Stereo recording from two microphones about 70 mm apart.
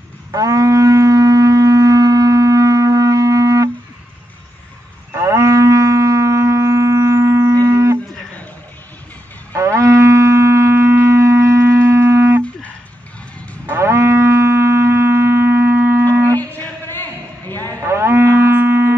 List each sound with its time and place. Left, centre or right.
0.3 s wind instrument: right
5.1 s livestock: right
7.6 s music: right
9.5 s music: right
13.7 s music: right
16.3 s a sound: left
17.8 s cattle: right
18.5 s a sound: right